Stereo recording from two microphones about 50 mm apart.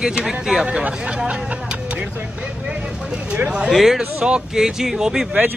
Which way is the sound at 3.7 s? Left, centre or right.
Centre.